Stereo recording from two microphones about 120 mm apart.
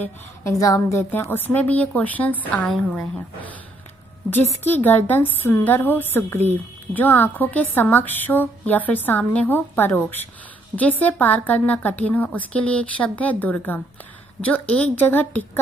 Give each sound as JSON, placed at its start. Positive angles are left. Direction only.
{"t": 0.0, "sound": "a woman's voice", "side_deg": 25}